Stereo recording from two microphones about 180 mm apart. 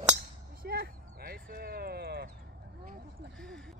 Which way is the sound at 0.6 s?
60° right (ahead or behind).